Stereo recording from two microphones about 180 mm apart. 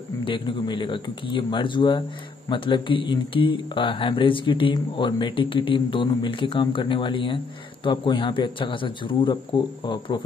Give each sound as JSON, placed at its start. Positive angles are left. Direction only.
{"t": 0.2, "sound": "speech", "side_deg": 25}